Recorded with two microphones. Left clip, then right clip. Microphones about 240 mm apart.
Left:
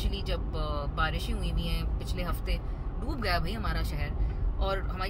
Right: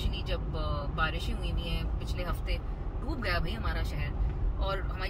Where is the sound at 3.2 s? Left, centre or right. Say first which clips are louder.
Left 2 dB; left.